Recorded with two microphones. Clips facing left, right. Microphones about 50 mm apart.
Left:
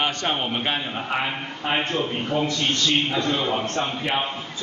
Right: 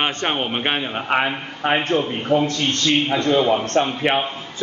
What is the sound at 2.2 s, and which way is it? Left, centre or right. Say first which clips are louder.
A man's voice: right 5 dB; right.